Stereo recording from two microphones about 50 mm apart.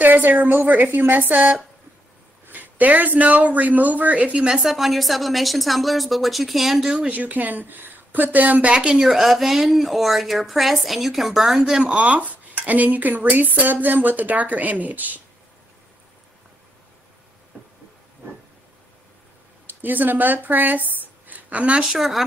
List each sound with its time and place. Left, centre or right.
0.0 s speech: right
4.6 s a woman's voice: centre
7.1 s speech: right
8.7 s speech: centre
9.0 s a woman's voice: centre
11.8 s speech: right
19.6 s speech: right
21.9 s speech: centre